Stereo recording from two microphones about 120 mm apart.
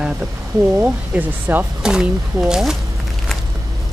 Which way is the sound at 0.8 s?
20° right (ahead or behind).